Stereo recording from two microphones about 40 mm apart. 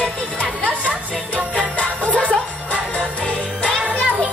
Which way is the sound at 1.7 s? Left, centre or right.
Left.